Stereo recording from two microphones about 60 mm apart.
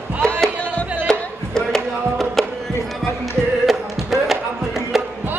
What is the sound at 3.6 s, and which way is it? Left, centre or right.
Music, centre.